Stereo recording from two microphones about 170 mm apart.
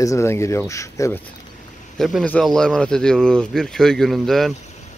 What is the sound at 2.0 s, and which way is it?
Speech, centre (ahead or behind).